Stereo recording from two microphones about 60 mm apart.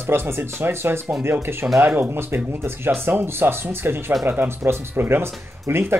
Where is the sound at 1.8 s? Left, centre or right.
Right.